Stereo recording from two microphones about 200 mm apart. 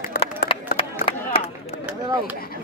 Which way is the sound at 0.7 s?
30° left (ahead or behind).